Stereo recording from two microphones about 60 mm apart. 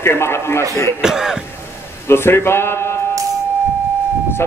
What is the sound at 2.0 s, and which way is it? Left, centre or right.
Speech, left.